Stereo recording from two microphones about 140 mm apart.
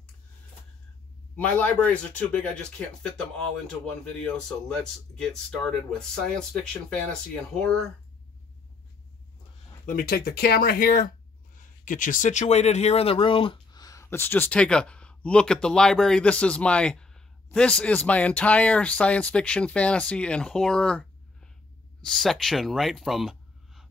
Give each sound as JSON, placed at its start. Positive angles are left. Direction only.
{"t": 1.3, "sound": "speech", "side_deg": 10}
{"t": 4.2, "sound": "speech", "side_deg": 5}
{"t": 9.8, "sound": "speech", "side_deg": 85}
{"t": 11.5, "sound": "speech", "side_deg": 70}